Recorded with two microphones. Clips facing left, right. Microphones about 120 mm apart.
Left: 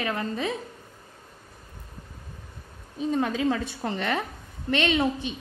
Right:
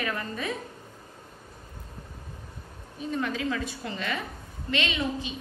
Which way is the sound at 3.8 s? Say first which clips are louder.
Left 9 dB; 65° left (ahead or behind).